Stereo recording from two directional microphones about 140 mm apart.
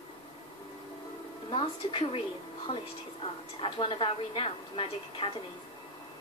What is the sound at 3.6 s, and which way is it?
A woman's voice, 40° left (ahead or behind).